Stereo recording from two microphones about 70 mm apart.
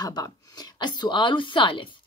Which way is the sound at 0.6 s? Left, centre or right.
Left.